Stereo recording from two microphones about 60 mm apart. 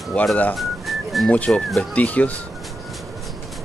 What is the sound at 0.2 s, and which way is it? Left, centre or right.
Speech, left.